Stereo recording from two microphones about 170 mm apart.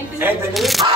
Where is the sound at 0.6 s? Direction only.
Centre (ahead or behind).